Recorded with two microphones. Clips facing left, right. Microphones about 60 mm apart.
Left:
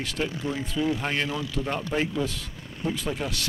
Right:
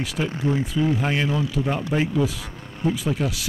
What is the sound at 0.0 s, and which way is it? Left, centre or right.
Speech, centre.